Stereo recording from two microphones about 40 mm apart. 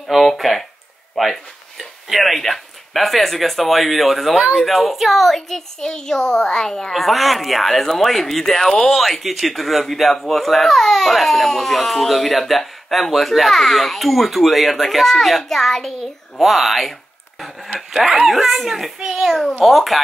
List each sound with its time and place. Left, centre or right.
0.1 s speech: centre
5.8 s a child's voice: centre
6.9 s a child's voice: centre
19.6 s speech: centre